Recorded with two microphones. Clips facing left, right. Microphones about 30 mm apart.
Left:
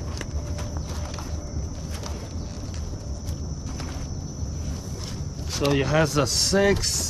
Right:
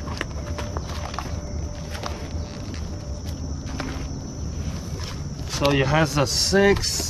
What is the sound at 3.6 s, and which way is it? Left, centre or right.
Walk, right.